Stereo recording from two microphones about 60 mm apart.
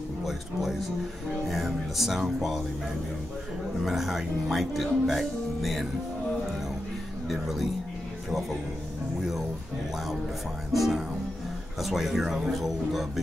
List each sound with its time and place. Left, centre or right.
0.2 s speech: centre
3.8 s speech: centre
7.2 s speech: centre
10.7 s speech: centre